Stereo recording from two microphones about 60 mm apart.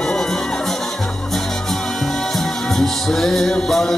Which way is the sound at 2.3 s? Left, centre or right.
Centre.